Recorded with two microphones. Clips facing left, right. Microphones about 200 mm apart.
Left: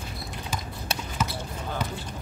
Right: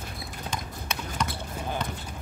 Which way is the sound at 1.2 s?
5° left (ahead or behind).